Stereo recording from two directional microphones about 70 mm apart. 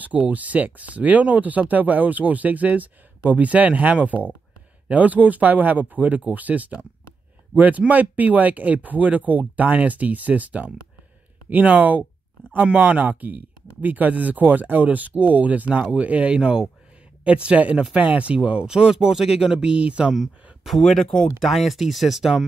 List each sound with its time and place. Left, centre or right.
0.0 s speech: right
20.6 s speech: centre